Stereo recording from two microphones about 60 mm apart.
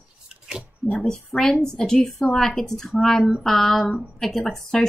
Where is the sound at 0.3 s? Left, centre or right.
Centre.